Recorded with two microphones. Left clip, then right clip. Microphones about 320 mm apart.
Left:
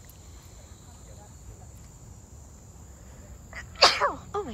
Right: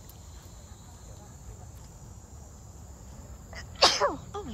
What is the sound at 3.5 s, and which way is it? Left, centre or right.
Sneeze, centre.